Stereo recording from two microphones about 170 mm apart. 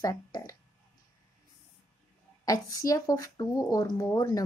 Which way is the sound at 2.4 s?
20° left (ahead or behind).